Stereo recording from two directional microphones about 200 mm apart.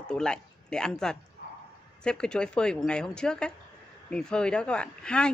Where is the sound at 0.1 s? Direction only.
5° left (ahead or behind).